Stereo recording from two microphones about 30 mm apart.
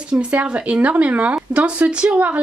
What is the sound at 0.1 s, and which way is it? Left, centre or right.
Speech, right.